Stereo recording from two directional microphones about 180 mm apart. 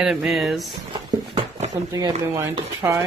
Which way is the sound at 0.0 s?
Centre (ahead or behind).